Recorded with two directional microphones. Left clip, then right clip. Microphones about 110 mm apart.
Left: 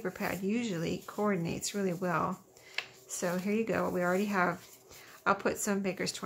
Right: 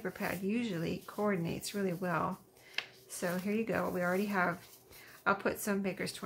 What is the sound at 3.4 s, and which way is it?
Speech, 20° left (ahead or behind).